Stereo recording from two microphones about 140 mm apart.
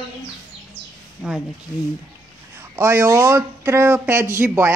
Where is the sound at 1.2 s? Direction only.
5° right (ahead or behind).